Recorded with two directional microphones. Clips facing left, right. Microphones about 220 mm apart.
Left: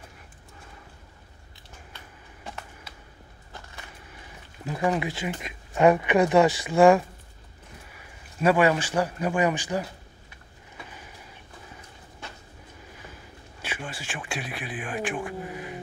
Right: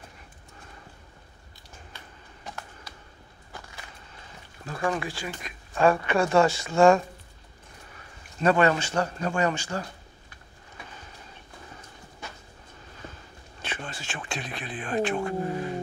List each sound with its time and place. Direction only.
4.6 s speech: 20° left (ahead or behind)
10.9 s train: 10° left (ahead or behind)
12.9 s speech: 10° left (ahead or behind)